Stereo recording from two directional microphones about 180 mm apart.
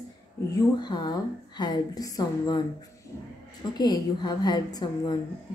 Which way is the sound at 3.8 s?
25° left (ahead or behind).